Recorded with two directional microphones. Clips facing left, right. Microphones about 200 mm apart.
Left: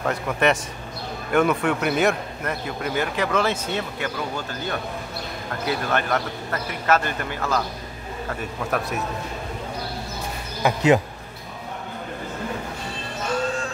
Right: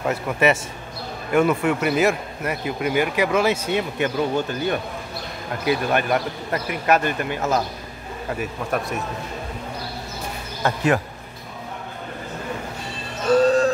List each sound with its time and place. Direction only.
0.0 s a man's voice: 5° right (ahead or behind); by 7.6 s 20° right (ahead or behind)
8.4 s speech: centre (ahead or behind)
10.6 s speech: 20° left (ahead or behind)
13.4 s music: 40° right (ahead or behind)